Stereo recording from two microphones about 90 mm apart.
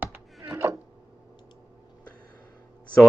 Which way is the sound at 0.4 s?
30° right (ahead or behind).